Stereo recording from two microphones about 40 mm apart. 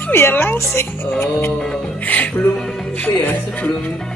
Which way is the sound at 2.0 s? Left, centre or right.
Left.